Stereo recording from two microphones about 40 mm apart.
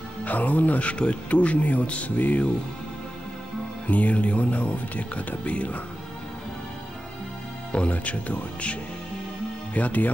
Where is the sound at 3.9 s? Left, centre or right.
Left.